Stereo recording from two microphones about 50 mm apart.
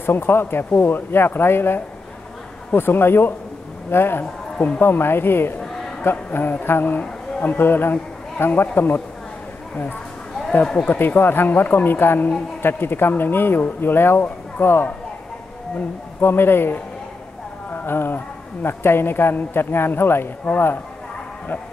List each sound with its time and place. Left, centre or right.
0.0 s a woman's voice: left
4.2 s speech: left
4.8 s a woman's voice: left
10.6 s speech: centre
10.9 s a woman's voice: left
16.2 s a woman's voice: left
17.7 s a woman's voice: left